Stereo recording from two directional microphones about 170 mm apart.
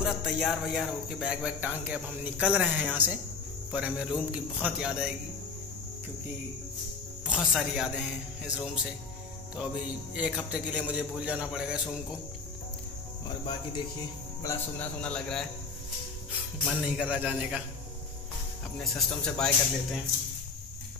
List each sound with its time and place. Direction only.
0.0 s cricket: centre (ahead or behind)
7.2 s cricket: 5° right (ahead or behind)
10.1 s a man's voice: 5° right (ahead or behind)
13.3 s speech: 30° left (ahead or behind)
14.4 s speech: 15° left (ahead or behind)
15.0 s cricket: 5° left (ahead or behind)
16.6 s cricket: 5° right (ahead or behind)
17.1 s a man's voice: 5° right (ahead or behind)
18.9 s cricket: 5° left (ahead or behind)